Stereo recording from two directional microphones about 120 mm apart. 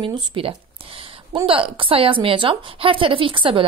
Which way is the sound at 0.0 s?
45° right (ahead or behind).